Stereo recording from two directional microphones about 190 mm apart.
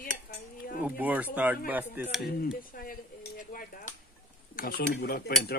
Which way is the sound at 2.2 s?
55° left (ahead or behind).